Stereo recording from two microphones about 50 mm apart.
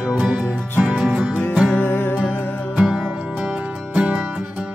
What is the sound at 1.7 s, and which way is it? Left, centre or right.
Music, left.